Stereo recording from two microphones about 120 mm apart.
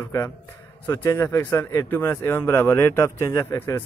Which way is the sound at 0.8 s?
20° left (ahead or behind).